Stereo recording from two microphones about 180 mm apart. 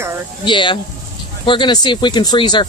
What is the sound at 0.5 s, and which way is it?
Speech, 25° left (ahead or behind).